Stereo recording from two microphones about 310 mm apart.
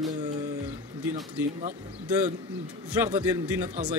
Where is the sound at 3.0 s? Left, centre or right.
Centre.